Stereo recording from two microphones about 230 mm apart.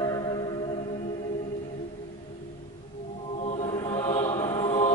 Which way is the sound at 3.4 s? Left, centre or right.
Left.